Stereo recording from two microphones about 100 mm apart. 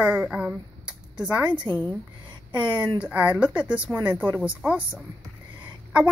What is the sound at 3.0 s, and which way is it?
Speech, 15° right (ahead or behind).